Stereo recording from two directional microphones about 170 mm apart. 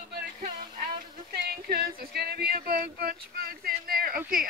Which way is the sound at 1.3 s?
65° right (ahead or behind).